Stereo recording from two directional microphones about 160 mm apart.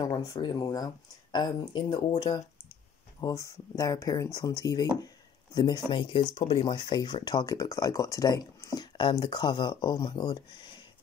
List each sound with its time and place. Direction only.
0.0 s speech: 25° left (ahead or behind)
3.2 s speech: 20° left (ahead or behind)
5.0 s a sound: 25° left (ahead or behind)
5.9 s speech: 35° left (ahead or behind)